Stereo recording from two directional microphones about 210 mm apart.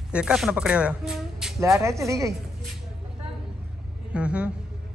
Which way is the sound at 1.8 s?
15° right (ahead or behind).